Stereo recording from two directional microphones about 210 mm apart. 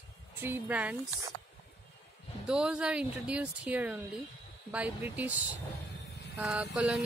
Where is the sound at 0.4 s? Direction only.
10° right (ahead or behind).